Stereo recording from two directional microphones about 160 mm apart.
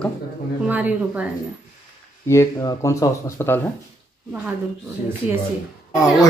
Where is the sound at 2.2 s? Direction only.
20° left (ahead or behind).